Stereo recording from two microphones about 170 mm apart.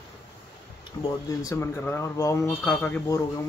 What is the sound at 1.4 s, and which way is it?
Speech, 15° left (ahead or behind).